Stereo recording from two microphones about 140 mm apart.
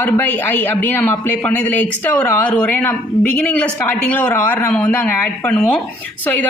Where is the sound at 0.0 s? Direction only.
15° left (ahead or behind).